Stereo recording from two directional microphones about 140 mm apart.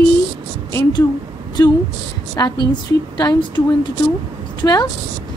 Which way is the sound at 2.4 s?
25° left (ahead or behind).